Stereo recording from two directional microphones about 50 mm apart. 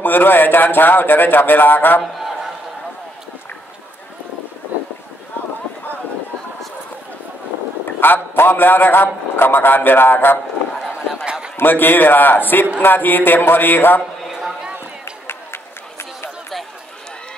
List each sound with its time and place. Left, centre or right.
0.0 s a man's voice: left
2.1 s a sound: centre
8.0 s a man's voice: left
11.5 s a man's voice: left
14.3 s a sound: centre
15.2 s run: left